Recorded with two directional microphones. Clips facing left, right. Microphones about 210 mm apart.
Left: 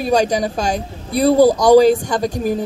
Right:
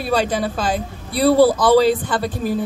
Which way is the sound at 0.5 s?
45° left (ahead or behind).